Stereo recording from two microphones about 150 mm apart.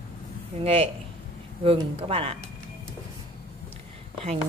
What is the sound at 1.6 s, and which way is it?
Speech, 40° right (ahead or behind).